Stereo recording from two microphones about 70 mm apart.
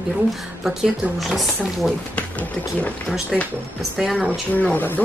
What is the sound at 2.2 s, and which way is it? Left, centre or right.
Speech, left.